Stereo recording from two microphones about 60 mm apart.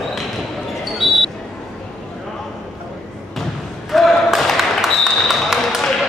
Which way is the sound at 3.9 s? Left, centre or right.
Centre.